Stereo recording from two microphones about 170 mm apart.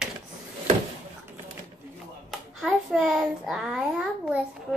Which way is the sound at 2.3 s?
Centre (ahead or behind).